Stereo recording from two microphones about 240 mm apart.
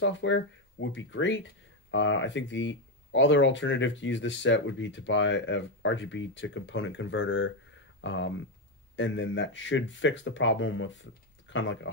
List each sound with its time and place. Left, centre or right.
0.0 s speech: left